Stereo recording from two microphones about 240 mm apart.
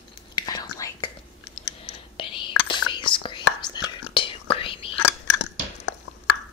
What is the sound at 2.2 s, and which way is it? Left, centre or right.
Whispering, centre.